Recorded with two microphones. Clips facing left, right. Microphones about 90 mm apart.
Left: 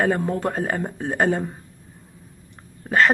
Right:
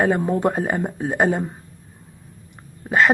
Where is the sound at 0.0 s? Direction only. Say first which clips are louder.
Right 3 dB; 10° right (ahead or behind).